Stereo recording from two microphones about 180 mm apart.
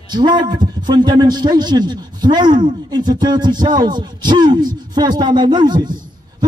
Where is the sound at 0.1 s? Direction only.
25° right (ahead or behind).